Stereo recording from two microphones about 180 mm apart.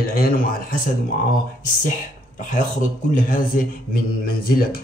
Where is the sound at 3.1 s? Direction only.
50° left (ahead or behind).